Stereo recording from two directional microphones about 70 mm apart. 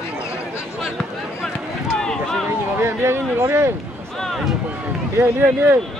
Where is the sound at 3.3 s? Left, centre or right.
Right.